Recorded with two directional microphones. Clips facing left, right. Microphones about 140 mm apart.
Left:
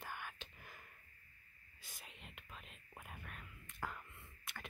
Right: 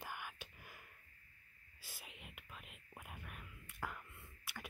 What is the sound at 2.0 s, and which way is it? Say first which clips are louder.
Whispering: even; 10° right (ahead or behind).